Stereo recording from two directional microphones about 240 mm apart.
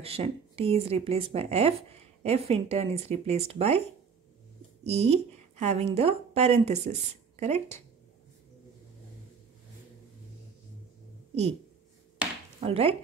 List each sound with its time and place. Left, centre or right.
0.0 s speech: right
4.8 s a woman's voice: right
12.5 s speech: right